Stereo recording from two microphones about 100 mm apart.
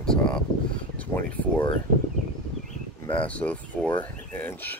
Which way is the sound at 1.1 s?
25° left (ahead or behind).